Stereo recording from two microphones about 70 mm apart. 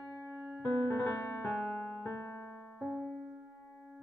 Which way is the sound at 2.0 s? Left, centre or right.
Left.